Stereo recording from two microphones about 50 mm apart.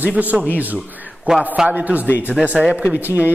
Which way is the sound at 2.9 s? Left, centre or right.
Right.